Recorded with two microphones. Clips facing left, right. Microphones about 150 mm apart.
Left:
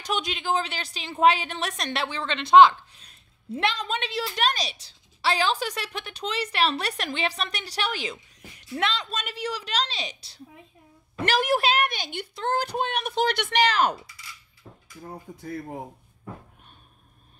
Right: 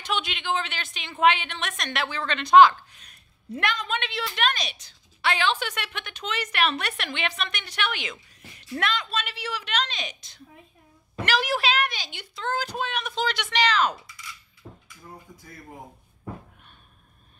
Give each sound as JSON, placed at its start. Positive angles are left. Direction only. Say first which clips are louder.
{"t": 0.0, "sound": "a woman's voice", "louder": "left 1 dB", "side_deg": 40}
{"t": 8.3, "sound": "a sound", "louder": "right 1 dB", "side_deg": 20}
{"t": 9.1, "sound": "a woman's voice", "louder": "left 1 dB", "side_deg": 45}
{"t": 11.3, "sound": "a woman's voice", "louder": "left 2 dB", "side_deg": 50}
{"t": 15.2, "sound": "speech", "louder": "left 10 dB", "side_deg": 60}